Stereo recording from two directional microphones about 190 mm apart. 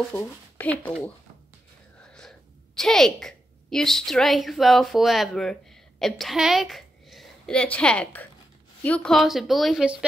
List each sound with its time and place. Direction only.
0.1 s speech: 10° left (ahead or behind)
2.0 s gasp: 5° left (ahead or behind)
2.8 s a woman's voice: centre (ahead or behind)